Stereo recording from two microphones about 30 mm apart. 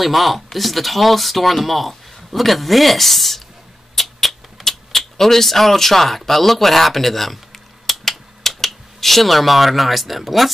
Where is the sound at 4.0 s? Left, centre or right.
Centre.